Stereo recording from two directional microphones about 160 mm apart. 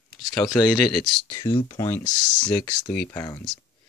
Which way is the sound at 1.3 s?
30° left (ahead or behind).